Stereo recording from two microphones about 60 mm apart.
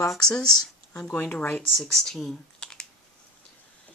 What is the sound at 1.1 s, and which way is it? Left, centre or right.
Speech, left.